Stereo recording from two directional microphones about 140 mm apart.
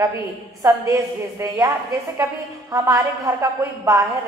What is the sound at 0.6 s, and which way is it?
A woman's voice, 20° right (ahead or behind).